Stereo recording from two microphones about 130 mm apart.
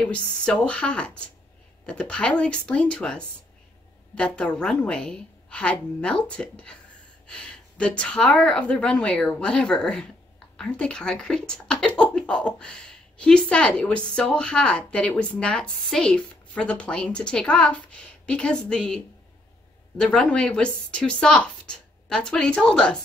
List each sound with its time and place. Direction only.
0.0 s speech: 5° left (ahead or behind)
20.0 s speech: 5° left (ahead or behind)